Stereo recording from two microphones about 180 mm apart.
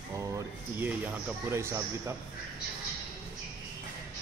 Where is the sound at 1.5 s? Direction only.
15° right (ahead or behind).